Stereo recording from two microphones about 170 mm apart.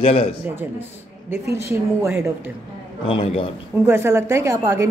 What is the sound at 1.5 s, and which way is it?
Speech, 15° right (ahead or behind).